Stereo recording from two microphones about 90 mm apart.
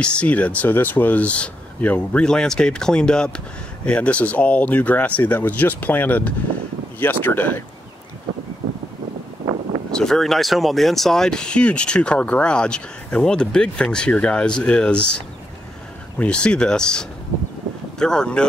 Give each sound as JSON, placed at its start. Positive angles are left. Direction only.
{"t": 0.0, "sound": "speech", "side_deg": 15}
{"t": 9.8, "sound": "speech", "side_deg": 5}
{"t": 16.2, "sound": "speech", "side_deg": 10}